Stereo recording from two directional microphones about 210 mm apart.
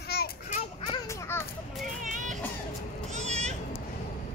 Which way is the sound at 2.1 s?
35° right (ahead or behind).